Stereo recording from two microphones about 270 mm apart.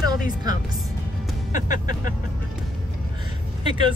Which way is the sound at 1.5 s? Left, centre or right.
Left.